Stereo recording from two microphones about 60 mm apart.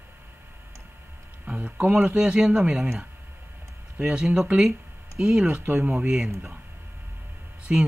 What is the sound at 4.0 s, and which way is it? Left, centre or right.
Speech, right.